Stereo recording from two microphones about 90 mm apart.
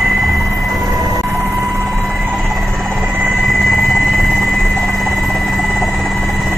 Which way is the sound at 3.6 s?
Centre (ahead or behind).